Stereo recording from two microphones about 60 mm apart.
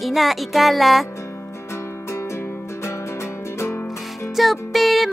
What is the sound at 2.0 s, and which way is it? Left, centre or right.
Music, left.